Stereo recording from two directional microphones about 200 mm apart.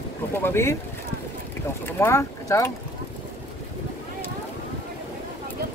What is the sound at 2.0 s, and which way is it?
Speech, 15° left (ahead or behind).